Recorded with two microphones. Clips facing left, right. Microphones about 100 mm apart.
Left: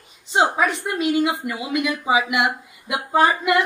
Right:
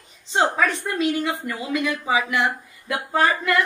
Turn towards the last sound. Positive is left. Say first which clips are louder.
# left 3 dB
turn(degrees=20)  # may be behind; listen again after turning